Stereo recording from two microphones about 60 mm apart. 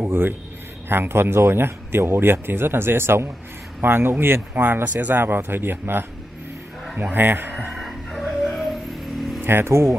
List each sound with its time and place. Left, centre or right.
0.0 s a sound: right
0.8 s speech: right
7.5 s music: centre
9.4 s speech: right